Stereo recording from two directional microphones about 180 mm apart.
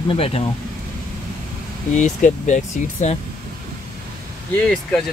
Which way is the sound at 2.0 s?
45° left (ahead or behind).